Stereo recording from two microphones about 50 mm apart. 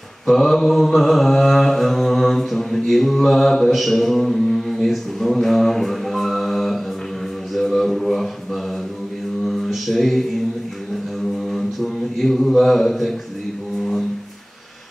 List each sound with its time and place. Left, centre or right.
0.3 s mantra: centre
9.5 s mantra: centre
11.4 s mantra: centre